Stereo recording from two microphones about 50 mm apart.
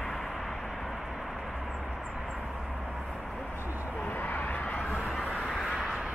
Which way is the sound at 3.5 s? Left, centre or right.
Right.